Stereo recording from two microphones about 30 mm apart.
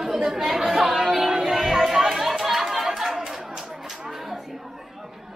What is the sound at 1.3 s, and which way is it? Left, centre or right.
Music, centre.